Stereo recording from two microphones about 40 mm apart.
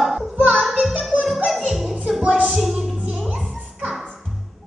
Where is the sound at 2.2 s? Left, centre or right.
Right.